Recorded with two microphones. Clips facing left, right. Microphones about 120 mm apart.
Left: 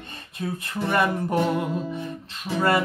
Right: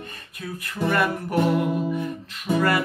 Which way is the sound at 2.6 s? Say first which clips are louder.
Left 1 dB; 25° left (ahead or behind).